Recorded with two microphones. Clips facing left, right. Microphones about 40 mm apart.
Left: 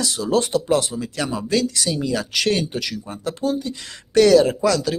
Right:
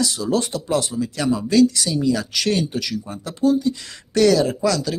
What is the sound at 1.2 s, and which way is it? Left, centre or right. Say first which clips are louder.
Speech: right 4 dB; left.